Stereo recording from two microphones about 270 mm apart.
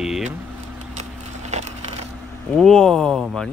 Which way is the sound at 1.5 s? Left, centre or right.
Right.